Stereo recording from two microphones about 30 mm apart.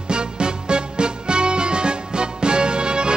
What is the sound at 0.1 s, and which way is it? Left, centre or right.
Music, right.